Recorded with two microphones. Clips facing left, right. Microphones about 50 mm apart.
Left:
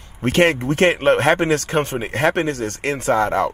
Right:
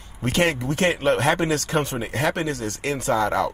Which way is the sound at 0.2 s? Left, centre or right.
Left.